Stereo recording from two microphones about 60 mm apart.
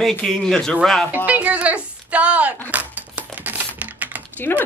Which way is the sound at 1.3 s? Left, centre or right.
Right.